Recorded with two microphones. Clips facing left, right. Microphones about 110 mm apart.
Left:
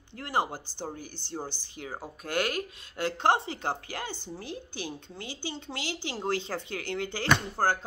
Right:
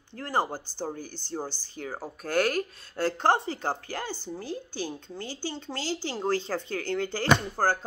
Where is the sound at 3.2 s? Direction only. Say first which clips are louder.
Even; 20° left (ahead or behind).